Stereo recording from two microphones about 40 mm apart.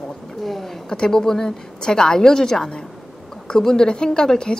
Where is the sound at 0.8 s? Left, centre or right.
Centre.